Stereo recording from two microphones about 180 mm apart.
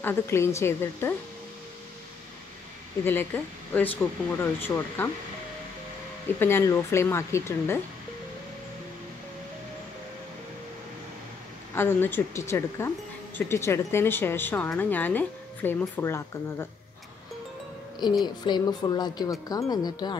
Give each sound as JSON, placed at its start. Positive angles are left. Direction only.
{"t": 0.0, "sound": "a woman's voice", "side_deg": 15}
{"t": 3.7, "sound": "a woman's voice", "side_deg": 10}
{"t": 6.4, "sound": "a woman's voice", "side_deg": 15}
{"t": 11.7, "sound": "a woman's voice", "side_deg": 10}
{"t": 18.2, "sound": "speech", "side_deg": 25}